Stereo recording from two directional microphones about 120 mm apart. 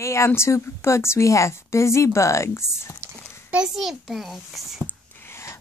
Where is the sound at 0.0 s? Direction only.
25° left (ahead or behind).